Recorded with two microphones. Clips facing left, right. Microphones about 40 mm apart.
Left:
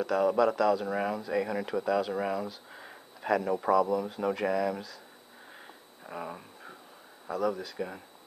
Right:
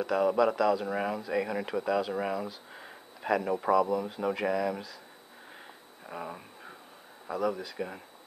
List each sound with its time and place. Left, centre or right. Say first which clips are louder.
0.0 s speech: even; centre
6.0 s speech: even; centre